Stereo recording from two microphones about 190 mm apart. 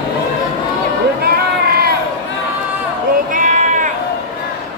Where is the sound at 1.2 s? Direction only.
55° right (ahead or behind).